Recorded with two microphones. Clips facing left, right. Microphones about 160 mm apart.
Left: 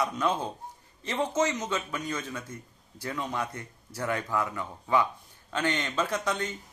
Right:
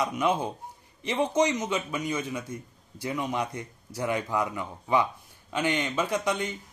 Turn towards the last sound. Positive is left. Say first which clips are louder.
# right 2 dB
turn(degrees=-15)  # may be behind; listen again after turning